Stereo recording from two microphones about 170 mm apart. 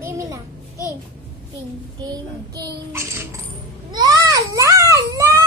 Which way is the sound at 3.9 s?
20° right (ahead or behind).